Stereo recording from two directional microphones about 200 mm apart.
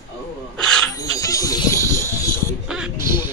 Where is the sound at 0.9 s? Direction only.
15° left (ahead or behind).